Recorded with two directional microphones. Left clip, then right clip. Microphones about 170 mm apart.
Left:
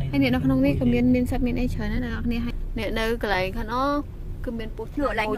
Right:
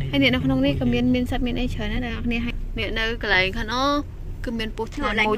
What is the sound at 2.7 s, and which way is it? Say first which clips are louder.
Speech: even; 15° left (ahead or behind).